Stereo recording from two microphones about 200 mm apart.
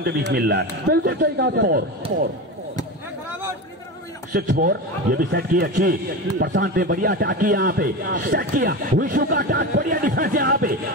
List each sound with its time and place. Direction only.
0.0 s a man's voice: 55° right (ahead or behind)
4.3 s a man's voice: 45° right (ahead or behind)